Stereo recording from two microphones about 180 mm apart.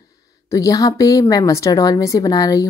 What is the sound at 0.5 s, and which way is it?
A woman's voice, 20° left (ahead or behind).